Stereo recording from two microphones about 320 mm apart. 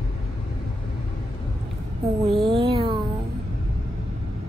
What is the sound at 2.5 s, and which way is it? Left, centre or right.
Music, centre.